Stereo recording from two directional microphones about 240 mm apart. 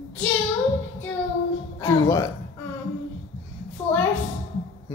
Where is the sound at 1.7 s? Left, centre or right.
Centre.